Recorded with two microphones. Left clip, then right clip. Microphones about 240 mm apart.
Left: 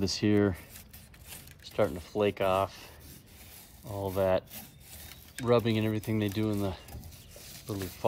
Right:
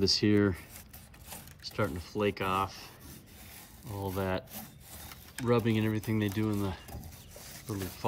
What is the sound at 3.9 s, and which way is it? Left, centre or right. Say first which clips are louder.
Speech: left 5 dB; left.